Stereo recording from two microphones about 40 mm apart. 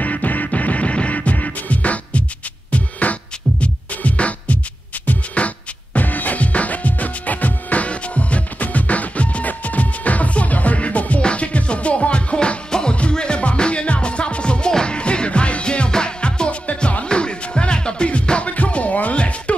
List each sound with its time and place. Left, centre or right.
0.0 s music: left
5.9 s music: left
16.6 s music: left
17.0 s music: left